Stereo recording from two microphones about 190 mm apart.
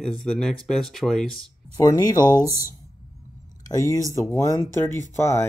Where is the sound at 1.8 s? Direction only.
20° left (ahead or behind).